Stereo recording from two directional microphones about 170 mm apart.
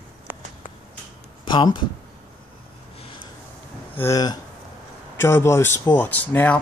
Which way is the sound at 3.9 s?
20° left (ahead or behind).